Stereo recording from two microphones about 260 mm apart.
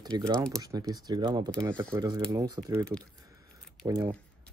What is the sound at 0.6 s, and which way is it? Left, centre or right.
Speech, centre.